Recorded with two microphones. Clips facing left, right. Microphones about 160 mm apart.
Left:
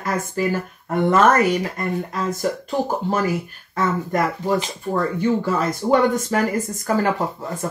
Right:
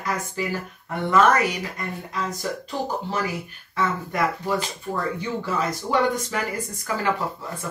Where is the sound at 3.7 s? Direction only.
45° left (ahead or behind).